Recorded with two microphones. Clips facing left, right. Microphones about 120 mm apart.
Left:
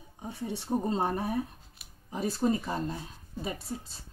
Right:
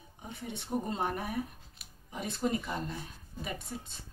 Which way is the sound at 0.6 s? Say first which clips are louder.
Left 4 dB; 30° left (ahead or behind).